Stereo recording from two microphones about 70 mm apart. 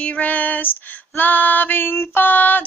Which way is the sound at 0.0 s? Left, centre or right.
Left.